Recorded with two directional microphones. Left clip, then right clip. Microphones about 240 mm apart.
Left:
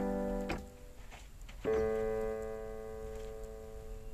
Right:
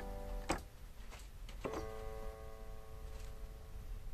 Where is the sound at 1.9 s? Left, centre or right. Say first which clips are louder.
Left 15 dB; left.